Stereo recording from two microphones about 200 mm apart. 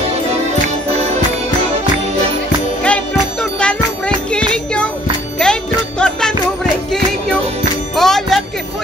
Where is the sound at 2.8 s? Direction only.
5° left (ahead or behind).